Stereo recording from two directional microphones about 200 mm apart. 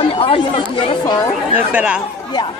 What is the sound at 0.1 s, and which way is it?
Speech, 25° left (ahead or behind).